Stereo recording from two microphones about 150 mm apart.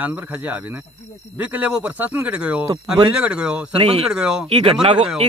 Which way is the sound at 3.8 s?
40° right (ahead or behind).